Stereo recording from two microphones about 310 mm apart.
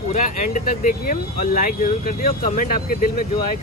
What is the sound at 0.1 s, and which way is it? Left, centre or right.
Speech, left.